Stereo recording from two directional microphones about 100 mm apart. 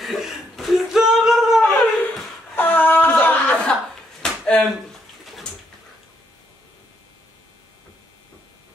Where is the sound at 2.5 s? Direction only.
20° left (ahead or behind); by 4.7 s centre (ahead or behind).